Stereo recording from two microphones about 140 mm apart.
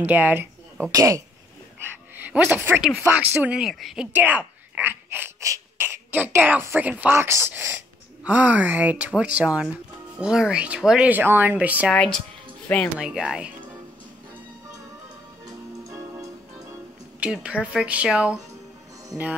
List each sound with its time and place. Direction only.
0.0 s speech: 10° right (ahead or behind)
11.9 s speech: 5° left (ahead or behind)
13.0 s speech: 5° right (ahead or behind)
17.2 s speech: 10° right (ahead or behind)